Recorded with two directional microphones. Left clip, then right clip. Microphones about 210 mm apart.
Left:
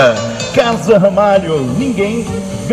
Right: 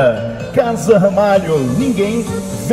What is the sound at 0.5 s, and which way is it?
Speech, 30° right (ahead or behind).